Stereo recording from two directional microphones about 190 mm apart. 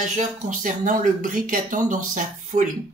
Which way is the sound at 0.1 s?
40° right (ahead or behind).